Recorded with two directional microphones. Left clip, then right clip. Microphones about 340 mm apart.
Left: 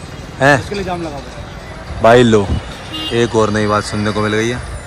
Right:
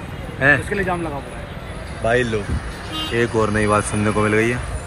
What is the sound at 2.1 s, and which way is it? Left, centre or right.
Speech, left.